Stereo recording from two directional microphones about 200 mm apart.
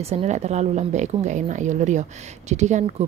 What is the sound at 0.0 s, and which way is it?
A woman's voice, 30° right (ahead or behind).